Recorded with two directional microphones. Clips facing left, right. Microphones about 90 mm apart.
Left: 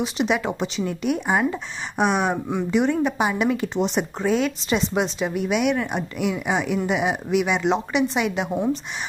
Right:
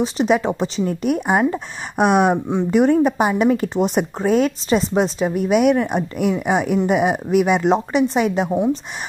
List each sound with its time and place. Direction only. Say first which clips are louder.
0.0 s a woman's voice: right 5 dB; 35° right (ahead or behind)